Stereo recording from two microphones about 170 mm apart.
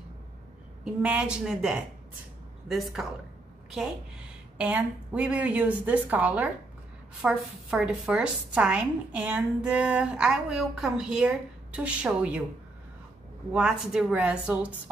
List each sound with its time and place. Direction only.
1.0 s a woman's voice: 5° right (ahead or behind)
13.5 s a woman's voice: 5° right (ahead or behind)